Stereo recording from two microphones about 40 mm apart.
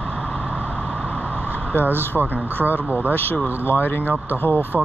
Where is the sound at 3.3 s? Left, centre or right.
Left.